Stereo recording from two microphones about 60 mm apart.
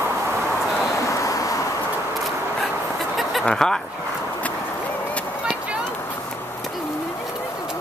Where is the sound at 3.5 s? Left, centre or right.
Centre.